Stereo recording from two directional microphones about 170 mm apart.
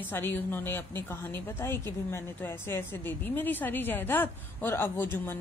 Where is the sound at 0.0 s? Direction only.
10° left (ahead or behind).